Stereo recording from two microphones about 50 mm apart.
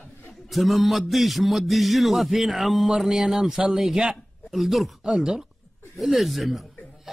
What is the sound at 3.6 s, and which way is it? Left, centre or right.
Speech, centre.